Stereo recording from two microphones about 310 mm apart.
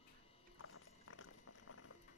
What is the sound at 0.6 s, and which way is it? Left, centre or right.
Clip-clop, left.